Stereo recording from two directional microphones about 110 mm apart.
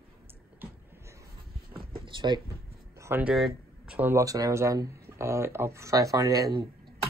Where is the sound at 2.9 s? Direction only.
25° right (ahead or behind).